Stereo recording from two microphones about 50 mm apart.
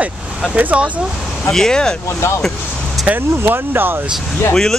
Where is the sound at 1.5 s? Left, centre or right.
Centre.